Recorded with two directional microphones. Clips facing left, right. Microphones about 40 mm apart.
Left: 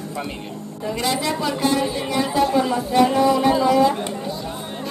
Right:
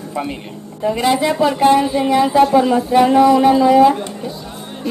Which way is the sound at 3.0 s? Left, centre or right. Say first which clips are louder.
Right 5 dB; right.